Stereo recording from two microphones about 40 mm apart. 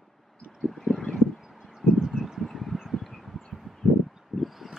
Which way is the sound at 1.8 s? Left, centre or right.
Centre.